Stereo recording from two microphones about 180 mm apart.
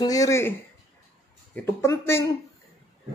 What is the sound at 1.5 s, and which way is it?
Speech, 15° left (ahead or behind).